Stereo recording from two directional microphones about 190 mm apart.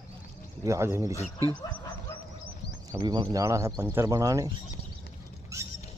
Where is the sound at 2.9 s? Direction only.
25° right (ahead or behind).